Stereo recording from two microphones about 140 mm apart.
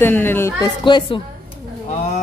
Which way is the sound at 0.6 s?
35° left (ahead or behind).